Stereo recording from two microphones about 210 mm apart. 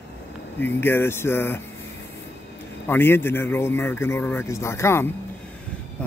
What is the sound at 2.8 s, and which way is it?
Speech, 10° left (ahead or behind).